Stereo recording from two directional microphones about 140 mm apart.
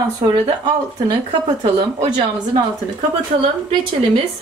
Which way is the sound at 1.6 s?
35° right (ahead or behind).